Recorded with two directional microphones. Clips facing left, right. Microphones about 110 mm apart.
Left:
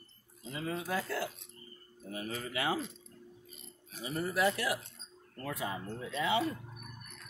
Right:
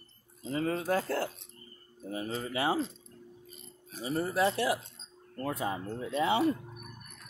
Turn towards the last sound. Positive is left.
turn(degrees=-30)  # may be behind; listen again after turning